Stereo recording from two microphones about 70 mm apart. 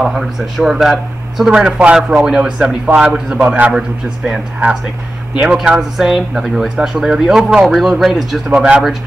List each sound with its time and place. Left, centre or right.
0.0 s a man's voice: centre
3.3 s a man's voice: right
3.7 s a man's voice: centre
4.6 s a man's voice: right
5.4 s speech: centre
8.5 s a man's voice: centre